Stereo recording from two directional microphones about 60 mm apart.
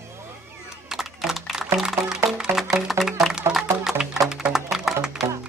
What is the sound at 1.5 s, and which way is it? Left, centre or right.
Music, centre.